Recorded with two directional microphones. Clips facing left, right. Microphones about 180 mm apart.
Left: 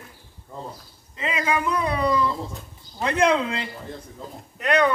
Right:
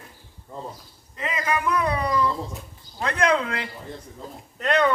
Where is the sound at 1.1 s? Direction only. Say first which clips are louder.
Left 2 dB; 20° left (ahead or behind).